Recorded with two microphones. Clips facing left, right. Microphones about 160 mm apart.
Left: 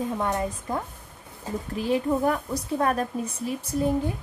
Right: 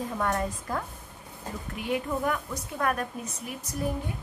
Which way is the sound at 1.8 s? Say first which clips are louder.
Left 6 dB; 30° left (ahead or behind).